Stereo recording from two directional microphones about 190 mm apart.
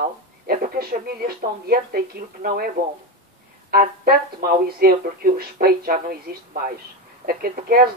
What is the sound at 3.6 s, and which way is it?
Speech, 50° right (ahead or behind).